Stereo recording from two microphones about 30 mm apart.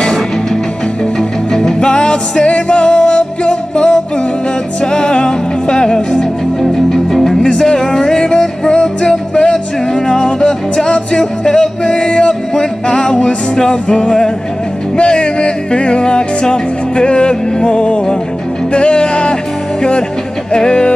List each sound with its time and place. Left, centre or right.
1.8 s music: left
6.6 s music: centre
7.5 s music: left